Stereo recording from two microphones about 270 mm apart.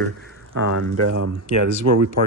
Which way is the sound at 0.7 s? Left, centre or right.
Right.